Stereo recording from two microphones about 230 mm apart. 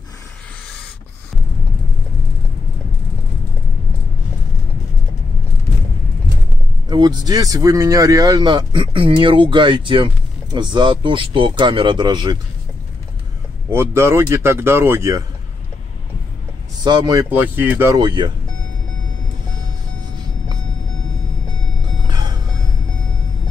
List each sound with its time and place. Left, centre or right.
6.9 s speech: centre
13.7 s speech: centre
16.8 s speech: centre
22.0 s vehicle: centre